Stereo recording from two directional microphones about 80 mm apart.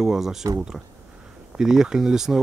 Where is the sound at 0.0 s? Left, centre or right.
Centre.